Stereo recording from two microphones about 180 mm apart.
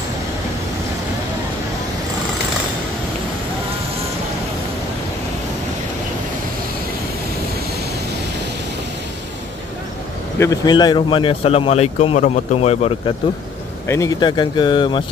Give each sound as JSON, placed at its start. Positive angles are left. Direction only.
{"t": 10.4, "sound": "speech", "side_deg": 20}
{"t": 13.8, "sound": "speech", "side_deg": 15}